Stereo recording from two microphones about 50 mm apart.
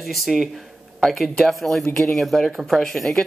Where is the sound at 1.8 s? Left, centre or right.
Centre.